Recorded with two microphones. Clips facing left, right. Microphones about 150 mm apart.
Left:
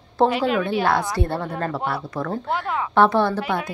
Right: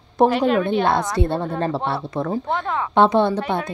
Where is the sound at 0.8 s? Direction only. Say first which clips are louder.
Right 2 dB; 20° right (ahead or behind).